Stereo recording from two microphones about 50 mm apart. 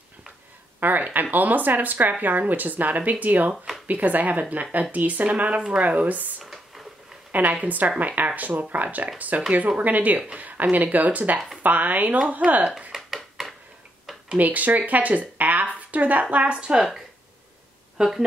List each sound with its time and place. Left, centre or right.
0.7 s speech: right
7.6 s speech: right
11.3 s speech: centre
11.6 s speech: right
12.2 s speech: right
12.9 s a sound: centre
14.3 s speech: right
17.9 s speech: centre